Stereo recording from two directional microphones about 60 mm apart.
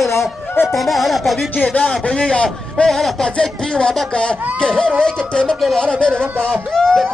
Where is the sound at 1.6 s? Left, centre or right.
Centre.